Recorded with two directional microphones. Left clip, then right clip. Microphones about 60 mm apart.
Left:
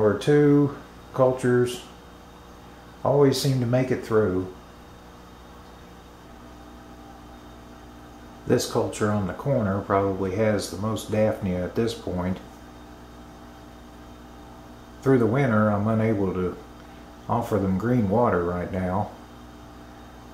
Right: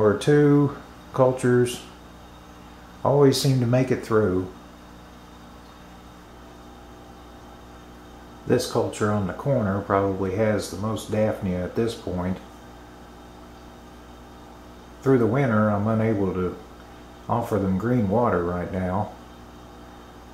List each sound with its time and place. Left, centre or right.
0.2 s speech: right
3.0 s speech: right
8.5 s speech: centre
15.0 s speech: centre